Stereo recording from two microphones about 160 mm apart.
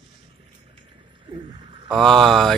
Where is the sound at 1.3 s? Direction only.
30° right (ahead or behind).